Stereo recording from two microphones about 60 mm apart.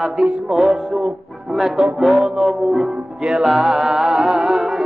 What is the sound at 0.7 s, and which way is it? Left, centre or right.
Music, centre.